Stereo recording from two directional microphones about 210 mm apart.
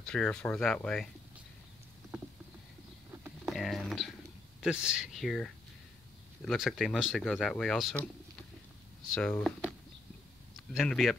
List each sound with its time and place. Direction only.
0.1 s speech: 5° left (ahead or behind)
3.3 s a sound: centre (ahead or behind)
4.6 s speech: 5° right (ahead or behind)
9.1 s speech: 5° left (ahead or behind)